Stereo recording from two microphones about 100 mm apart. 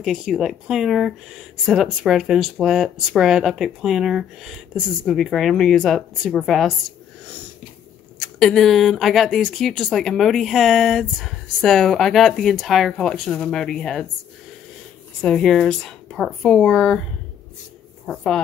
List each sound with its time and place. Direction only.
0.0 s speech: centre (ahead or behind)
8.2 s speech: 5° left (ahead or behind)
15.2 s speech: 5° left (ahead or behind)
18.0 s speech: 5° left (ahead or behind)